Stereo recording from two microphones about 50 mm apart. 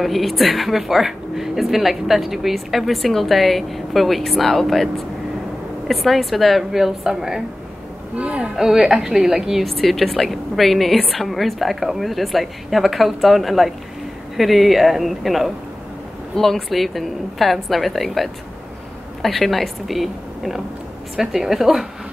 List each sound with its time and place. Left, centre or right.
0.0 s a woman's voice: centre
8.2 s speech: right
8.5 s a woman's voice: centre